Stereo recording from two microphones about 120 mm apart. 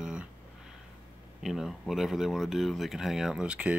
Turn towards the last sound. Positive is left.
turn(degrees=-10)  # may be behind; listen again after turning